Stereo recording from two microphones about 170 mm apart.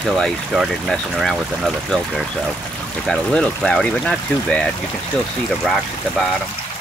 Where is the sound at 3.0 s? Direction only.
5° left (ahead or behind).